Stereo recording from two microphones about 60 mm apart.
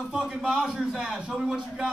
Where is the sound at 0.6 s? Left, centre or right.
Centre.